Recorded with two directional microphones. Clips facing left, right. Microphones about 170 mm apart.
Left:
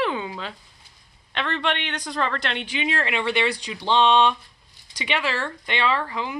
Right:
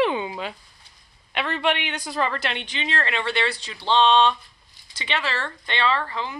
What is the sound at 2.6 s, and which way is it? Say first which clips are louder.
Speech: left 2 dB; 10° left (ahead or behind).